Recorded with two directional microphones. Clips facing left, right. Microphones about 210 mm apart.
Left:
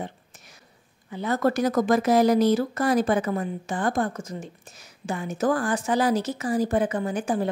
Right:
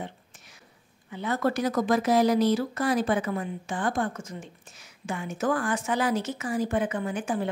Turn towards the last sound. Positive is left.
turn(degrees=40)  # may be behind; listen again after turning